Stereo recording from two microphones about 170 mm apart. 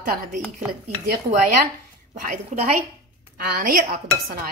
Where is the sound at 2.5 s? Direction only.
45° right (ahead or behind).